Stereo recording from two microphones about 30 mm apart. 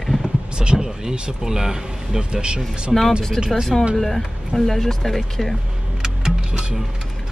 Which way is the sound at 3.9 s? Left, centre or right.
Centre.